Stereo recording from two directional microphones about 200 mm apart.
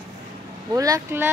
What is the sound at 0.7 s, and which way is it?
Speech, 15° right (ahead or behind).